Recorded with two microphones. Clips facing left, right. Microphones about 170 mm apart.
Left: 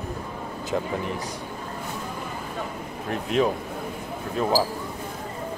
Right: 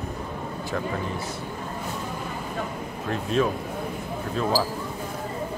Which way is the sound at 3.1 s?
20° left (ahead or behind).